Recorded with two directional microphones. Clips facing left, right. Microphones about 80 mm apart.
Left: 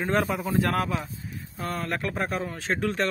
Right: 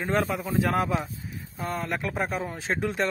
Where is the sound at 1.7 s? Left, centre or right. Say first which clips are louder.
Even; centre.